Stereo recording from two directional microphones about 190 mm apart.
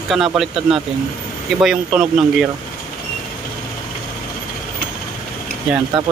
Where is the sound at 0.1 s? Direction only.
Centre (ahead or behind).